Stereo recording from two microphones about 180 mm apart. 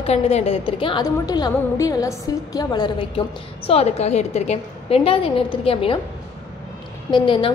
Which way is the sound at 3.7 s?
35° left (ahead or behind).